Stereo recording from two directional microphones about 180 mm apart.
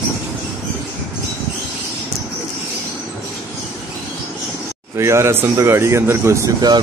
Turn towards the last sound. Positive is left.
turn(degrees=-20)  # may be behind; listen again after turning